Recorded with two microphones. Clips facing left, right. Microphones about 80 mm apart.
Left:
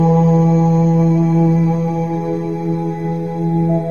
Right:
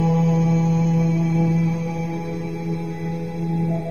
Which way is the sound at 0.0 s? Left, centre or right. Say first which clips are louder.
Left 7 dB; left.